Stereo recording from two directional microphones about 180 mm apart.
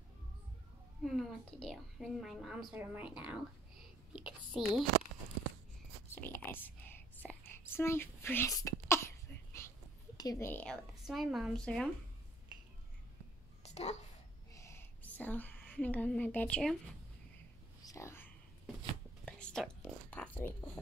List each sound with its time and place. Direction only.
1.0 s a woman's voice: centre (ahead or behind)
6.2 s whispering: 10° left (ahead or behind)
10.1 s a woman's voice: 20° left (ahead or behind); by 11.9 s 5° left (ahead or behind)
13.6 s a sound: 35° left (ahead or behind)
14.5 s a sound: 15° left (ahead or behind)
17.8 s whispering: 15° left (ahead or behind)
19.2 s speech: 5° left (ahead or behind)